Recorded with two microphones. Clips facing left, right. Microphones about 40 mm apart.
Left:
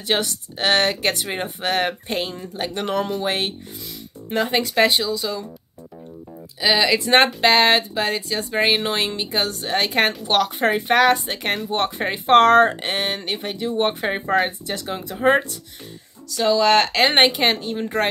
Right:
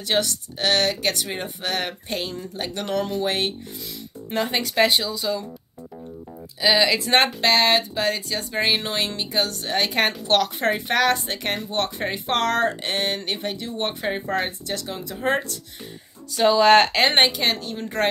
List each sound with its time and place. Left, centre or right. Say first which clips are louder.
0.0 s speech: left 1 dB; centre
6.6 s speech: left 1 dB; centre
8.8 s speech: left 3 dB; centre
12.3 s speech: left 9 dB; left
12.9 s speech: left 1 dB; centre
16.3 s speech: right 2 dB; centre
17.3 s speech: left 4 dB; left